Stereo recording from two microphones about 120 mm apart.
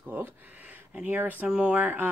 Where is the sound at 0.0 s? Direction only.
15° right (ahead or behind).